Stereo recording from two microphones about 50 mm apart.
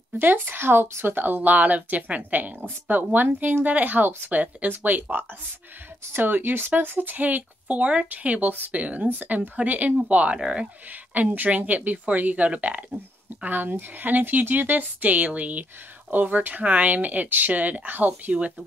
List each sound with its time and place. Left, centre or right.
0.2 s speech: right
6.1 s speech: right; by 10.7 s centre
10.9 s speech: right